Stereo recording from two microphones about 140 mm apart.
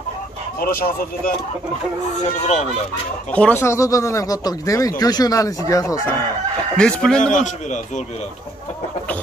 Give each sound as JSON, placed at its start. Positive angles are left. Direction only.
{"t": 0.6, "sound": "speech", "side_deg": 90}
{"t": 2.1, "sound": "speech", "side_deg": 55}
{"t": 3.3, "sound": "speech", "side_deg": 10}
{"t": 6.8, "sound": "speech", "side_deg": 5}
{"t": 7.4, "sound": "speech", "side_deg": 60}